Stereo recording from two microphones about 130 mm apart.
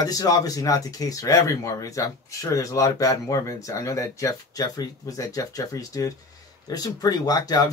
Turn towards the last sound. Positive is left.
turn(degrees=30)  # may be behind; listen again after turning